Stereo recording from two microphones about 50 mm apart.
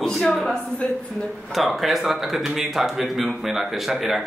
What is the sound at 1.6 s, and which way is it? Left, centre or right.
A man's voice, centre.